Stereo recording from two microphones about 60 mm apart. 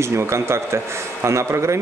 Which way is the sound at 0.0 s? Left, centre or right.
Right.